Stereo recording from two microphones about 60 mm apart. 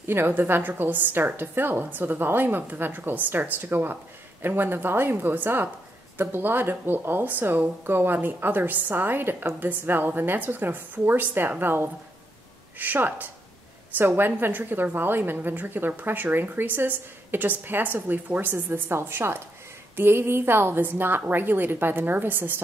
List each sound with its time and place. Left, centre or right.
0.0 s a woman's voice: right